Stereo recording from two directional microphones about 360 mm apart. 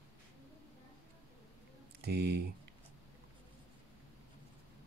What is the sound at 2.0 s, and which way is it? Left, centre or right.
Speech, right.